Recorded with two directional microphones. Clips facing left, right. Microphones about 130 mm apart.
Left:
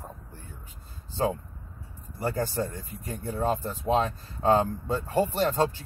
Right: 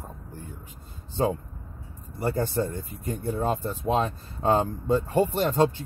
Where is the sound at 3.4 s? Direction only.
20° right (ahead or behind).